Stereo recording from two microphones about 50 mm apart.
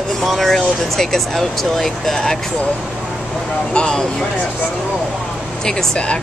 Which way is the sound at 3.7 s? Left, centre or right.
Centre.